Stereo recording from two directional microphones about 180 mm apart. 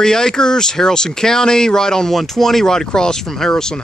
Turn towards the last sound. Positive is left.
turn(degrees=5)  # may be behind; listen again after turning